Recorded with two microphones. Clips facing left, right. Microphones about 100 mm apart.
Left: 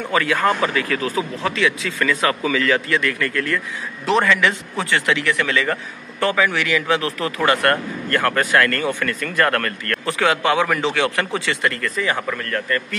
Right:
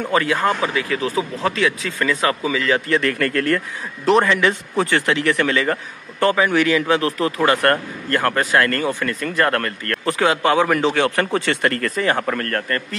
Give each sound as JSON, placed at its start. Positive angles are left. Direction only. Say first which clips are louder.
{"t": 0.1, "sound": "speech", "louder": "left 1 dB", "side_deg": -30}
{"t": 2.9, "sound": "a man's voice", "louder": "right 2 dB", "side_deg": -45}
{"t": 4.2, "sound": "a man's voice", "louder": "right 1 dB", "side_deg": -30}